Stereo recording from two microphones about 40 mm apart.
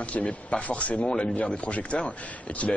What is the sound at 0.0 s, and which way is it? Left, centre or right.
A man's voice, left.